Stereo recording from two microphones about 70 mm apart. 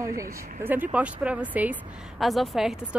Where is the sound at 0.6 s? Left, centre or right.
Right.